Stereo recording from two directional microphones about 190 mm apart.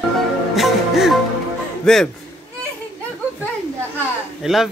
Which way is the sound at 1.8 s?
5° left (ahead or behind).